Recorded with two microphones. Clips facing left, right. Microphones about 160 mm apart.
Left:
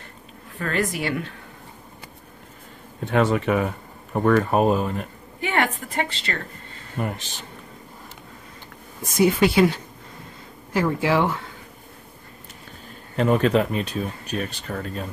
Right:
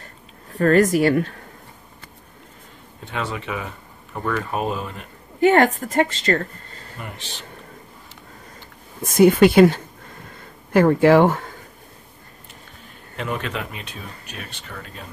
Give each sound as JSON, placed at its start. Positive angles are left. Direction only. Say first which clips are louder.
{"t": 0.5, "sound": "a woman's voice", "louder": "right 10 dB", "side_deg": -40}
{"t": 3.1, "sound": "speech", "louder": "left 8 dB", "side_deg": 50}
{"t": 5.4, "sound": "a woman's voice", "louder": "right 9 dB", "side_deg": -40}
{"t": 7.0, "sound": "speech", "louder": "left 8 dB", "side_deg": 45}
{"t": 9.1, "sound": "speech", "louder": "right 6 dB", "side_deg": -55}
{"t": 13.1, "sound": "speech", "louder": "left 9 dB", "side_deg": 40}